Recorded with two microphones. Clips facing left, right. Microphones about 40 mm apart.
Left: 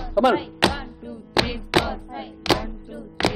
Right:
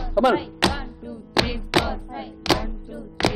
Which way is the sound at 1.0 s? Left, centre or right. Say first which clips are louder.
Even; centre.